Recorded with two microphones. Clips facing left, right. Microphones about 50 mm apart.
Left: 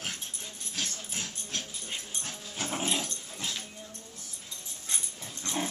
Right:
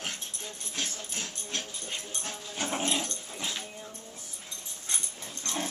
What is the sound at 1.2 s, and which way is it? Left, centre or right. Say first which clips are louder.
Dog: right 1 dB; centre.